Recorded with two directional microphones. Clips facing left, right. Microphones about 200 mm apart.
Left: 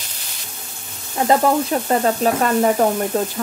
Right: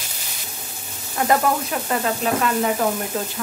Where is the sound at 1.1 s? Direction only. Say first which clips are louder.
Left 4 dB; 25° left (ahead or behind).